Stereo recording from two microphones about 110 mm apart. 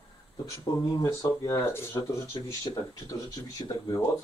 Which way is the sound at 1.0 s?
25° left (ahead or behind).